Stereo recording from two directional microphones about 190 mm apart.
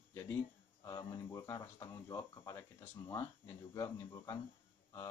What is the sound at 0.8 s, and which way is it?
Speech, 20° left (ahead or behind).